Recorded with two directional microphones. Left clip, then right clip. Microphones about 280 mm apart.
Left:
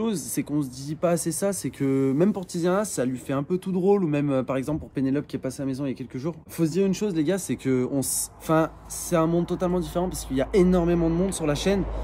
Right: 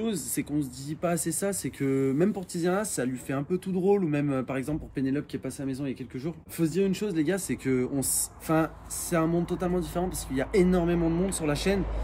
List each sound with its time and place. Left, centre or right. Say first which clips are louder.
0.0 s speech: left 3 dB; centre